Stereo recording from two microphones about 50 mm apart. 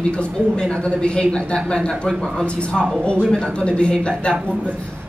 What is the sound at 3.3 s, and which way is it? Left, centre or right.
A woman's voice, centre.